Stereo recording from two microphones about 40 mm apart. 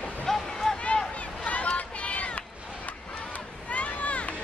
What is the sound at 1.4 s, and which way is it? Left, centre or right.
Run, left.